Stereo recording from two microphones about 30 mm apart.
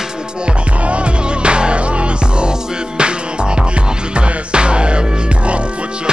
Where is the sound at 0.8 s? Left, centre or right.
Right.